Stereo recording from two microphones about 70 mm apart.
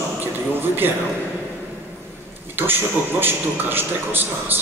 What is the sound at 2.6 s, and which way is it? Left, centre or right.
A man's voice, right.